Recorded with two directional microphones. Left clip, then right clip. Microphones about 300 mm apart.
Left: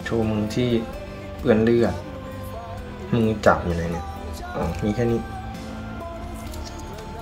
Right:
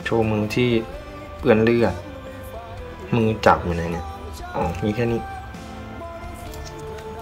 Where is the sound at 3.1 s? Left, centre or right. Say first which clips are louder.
Right 2 dB; centre.